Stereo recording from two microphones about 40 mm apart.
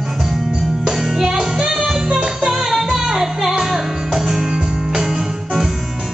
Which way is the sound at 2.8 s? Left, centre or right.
Centre.